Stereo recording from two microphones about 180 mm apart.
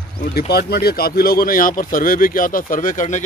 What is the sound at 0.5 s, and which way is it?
Speech, 60° left (ahead or behind).